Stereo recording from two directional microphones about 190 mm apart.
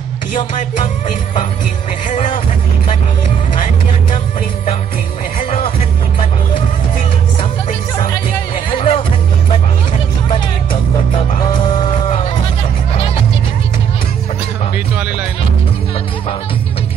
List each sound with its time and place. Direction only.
2.0 s music: 35° left (ahead or behind)
8.7 s music: 30° left (ahead or behind)
11.8 s music: 30° left (ahead or behind)